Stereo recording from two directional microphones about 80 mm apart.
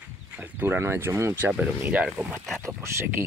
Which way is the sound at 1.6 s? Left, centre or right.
Centre.